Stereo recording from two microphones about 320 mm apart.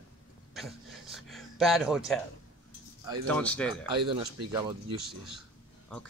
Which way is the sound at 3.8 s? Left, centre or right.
Centre.